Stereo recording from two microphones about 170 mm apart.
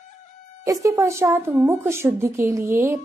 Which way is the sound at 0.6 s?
15° right (ahead or behind).